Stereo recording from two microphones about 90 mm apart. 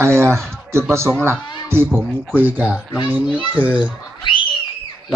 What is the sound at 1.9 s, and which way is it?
Speech, 20° right (ahead or behind).